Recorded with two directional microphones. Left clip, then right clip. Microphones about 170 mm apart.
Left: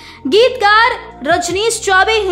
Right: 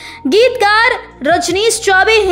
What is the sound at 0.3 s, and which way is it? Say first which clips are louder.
A woman's voice: even; 15° right (ahead or behind).